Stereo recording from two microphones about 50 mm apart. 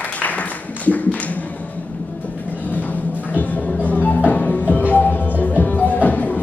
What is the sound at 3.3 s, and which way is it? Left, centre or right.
Music, left.